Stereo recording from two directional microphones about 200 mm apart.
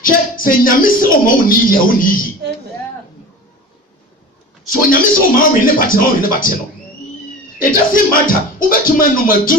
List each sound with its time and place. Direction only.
0.0 s speech: 45° left (ahead or behind)
4.6 s speech: 45° left (ahead or behind)
7.5 s speech: 45° left (ahead or behind)